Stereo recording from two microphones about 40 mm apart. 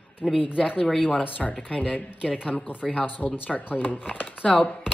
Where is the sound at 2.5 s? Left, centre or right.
Left.